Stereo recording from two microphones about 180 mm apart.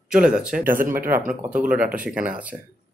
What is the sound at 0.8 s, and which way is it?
Speech, 50° right (ahead or behind).